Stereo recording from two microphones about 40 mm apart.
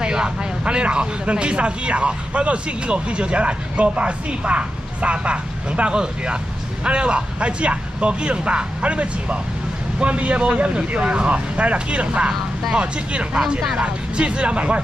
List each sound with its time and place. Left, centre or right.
0.0 s speech: centre